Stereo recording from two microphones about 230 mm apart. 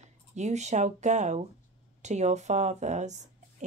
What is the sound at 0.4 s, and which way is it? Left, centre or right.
A woman's voice, right.